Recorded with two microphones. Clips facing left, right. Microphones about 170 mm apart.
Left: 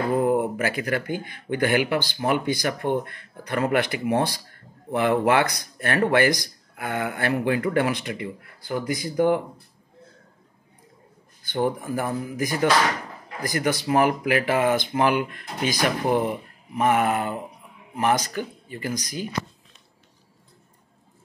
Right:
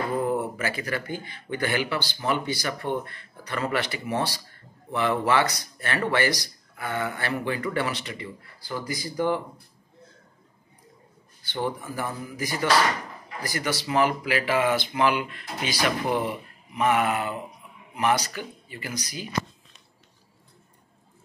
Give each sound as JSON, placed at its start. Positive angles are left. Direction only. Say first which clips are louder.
{"t": 0.6, "sound": "speech", "louder": "left 4 dB", "side_deg": 50}
{"t": 11.4, "sound": "speech", "louder": "left 5 dB", "side_deg": 50}